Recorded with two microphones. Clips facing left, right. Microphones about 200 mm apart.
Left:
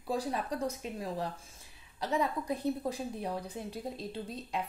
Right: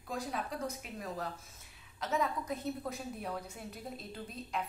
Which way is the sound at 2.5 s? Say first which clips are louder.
Left 5 dB; 30° left (ahead or behind).